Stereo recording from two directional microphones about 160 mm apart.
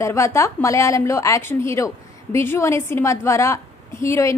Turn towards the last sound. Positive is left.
turn(degrees=15)  # may be behind; listen again after turning